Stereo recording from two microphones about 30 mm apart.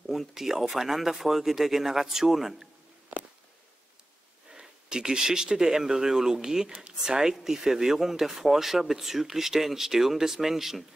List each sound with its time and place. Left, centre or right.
0.3 s speech: centre
4.5 s speech: right; by 10.9 s centre